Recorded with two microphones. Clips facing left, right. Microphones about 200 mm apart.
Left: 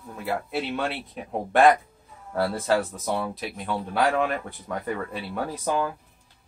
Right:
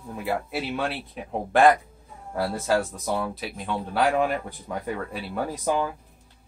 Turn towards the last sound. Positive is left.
turn(degrees=-15)  # may be behind; listen again after turning